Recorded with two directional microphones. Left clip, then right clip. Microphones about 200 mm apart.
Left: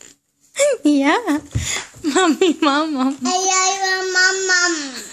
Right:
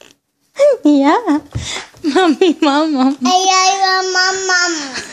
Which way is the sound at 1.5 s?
25° right (ahead or behind).